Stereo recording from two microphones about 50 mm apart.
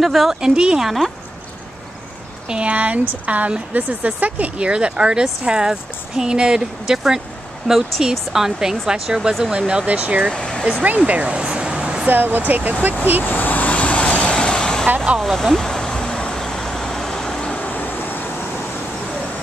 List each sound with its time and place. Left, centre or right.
0.0 s speech: centre
0.4 s speech: centre
0.8 s speech: centre
2.4 s speech: right
9.8 s speech: right
10.3 s speech: centre
11.2 s a sound: centre
12.1 s speech: right
13.2 s vehicle: left; by 14.9 s centre
15.1 s vehicle: centre
17.6 s vehicle: left